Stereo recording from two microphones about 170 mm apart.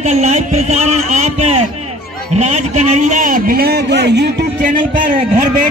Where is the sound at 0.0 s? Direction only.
45° right (ahead or behind); by 4.7 s 65° right (ahead or behind).